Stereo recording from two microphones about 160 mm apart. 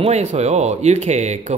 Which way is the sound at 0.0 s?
45° right (ahead or behind).